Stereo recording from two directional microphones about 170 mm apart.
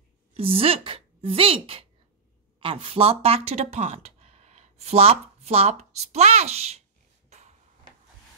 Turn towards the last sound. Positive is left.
turn(degrees=-40)  # may be behind; listen again after turning